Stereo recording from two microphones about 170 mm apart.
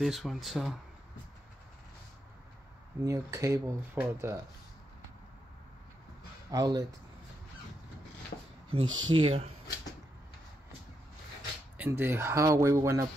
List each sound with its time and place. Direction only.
0.0 s speech: centre (ahead or behind)
3.0 s speech: 20° right (ahead or behind)
6.5 s speech: 20° right (ahead or behind)
8.3 s speech: 65° left (ahead or behind)
8.7 s speech: 35° right (ahead or behind)
11.8 s speech: 10° right (ahead or behind)